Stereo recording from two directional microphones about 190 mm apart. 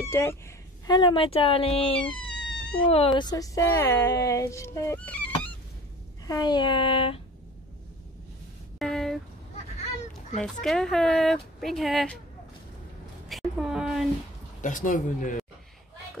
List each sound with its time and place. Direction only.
0.0 s speech: 15° left (ahead or behind); by 2.0 s 30° left (ahead or behind)
2.0 s cat: 5° left (ahead or behind)
3.2 s speech: 20° left (ahead or behind)
6.2 s speech: 20° left (ahead or behind)
8.7 s a sound: centre (ahead or behind)
10.4 s speech: 5° left (ahead or behind)
13.3 s speech: centre (ahead or behind)
14.6 s a man's voice: 45° left (ahead or behind)